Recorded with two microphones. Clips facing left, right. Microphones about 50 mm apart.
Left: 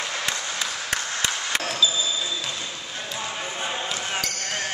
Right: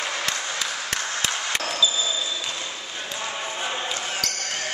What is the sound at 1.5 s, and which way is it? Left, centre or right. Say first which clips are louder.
Basketball bounce: even; centre.